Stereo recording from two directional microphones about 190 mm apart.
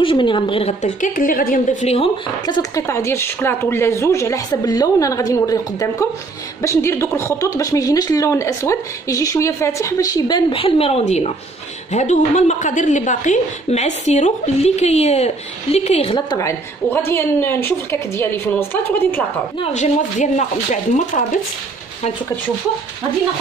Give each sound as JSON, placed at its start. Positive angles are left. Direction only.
{"t": 0.0, "sound": "a woman's voice", "side_deg": 25}
{"t": 2.4, "sound": "a woman's voice", "side_deg": 20}
{"t": 19.6, "sound": "a woman's voice", "side_deg": 40}